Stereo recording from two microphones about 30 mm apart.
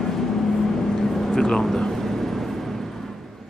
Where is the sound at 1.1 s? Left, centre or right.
Centre.